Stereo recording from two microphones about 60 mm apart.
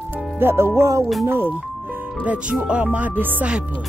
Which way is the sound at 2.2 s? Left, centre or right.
Centre.